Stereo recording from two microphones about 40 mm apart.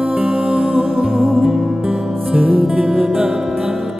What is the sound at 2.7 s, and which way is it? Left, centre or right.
Music, centre.